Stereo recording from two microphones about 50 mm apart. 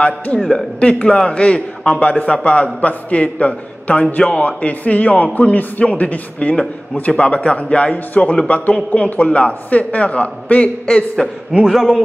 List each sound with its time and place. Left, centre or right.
0.7 s a man's voice: left
7.1 s a man's voice: left
11.5 s speech: centre